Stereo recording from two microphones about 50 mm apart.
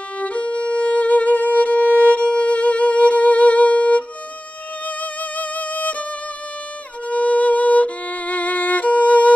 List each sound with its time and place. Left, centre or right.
0.2 s violin: left
4.8 s music: left
7.1 s music: left